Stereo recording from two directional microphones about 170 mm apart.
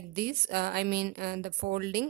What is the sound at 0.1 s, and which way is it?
Speech, 65° right (ahead or behind).